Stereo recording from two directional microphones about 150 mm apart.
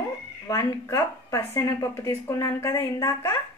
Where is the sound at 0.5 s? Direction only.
25° left (ahead or behind).